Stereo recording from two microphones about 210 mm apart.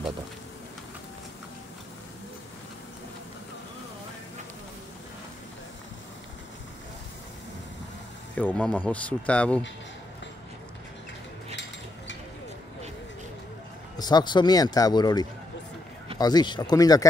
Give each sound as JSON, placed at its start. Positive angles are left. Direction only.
{"t": 8.4, "sound": "speech", "side_deg": 5}
{"t": 13.9, "sound": "speech", "side_deg": 20}